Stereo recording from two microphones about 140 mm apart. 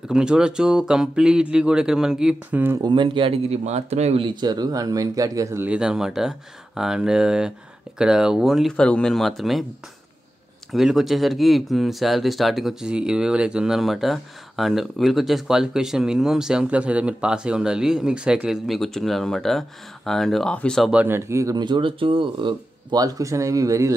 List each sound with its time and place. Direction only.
0.1 s speech: 5° right (ahead or behind)
2.8 s speech: 35° right (ahead or behind)
5.7 s speech: 5° right (ahead or behind)
10.7 s speech: centre (ahead or behind)
20.9 s speech: 15° right (ahead or behind)